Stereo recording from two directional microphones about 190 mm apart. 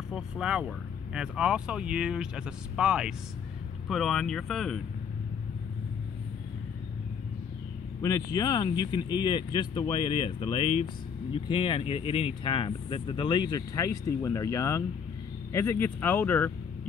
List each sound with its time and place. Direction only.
0.1 s speech: 5° right (ahead or behind)
8.0 s speech: 20° left (ahead or behind)